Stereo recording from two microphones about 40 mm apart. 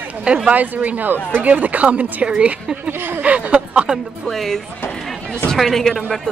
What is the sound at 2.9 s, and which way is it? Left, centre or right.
Speech, right.